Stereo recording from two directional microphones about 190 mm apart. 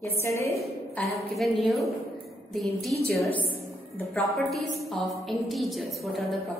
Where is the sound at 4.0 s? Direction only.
5° left (ahead or behind).